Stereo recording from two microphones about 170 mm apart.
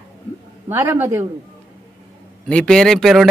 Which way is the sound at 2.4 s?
5° left (ahead or behind).